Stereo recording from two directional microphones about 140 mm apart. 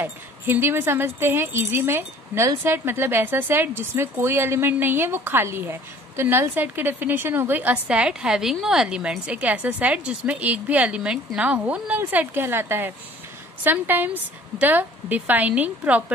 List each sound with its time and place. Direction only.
0.0 s speech: 15° right (ahead or behind)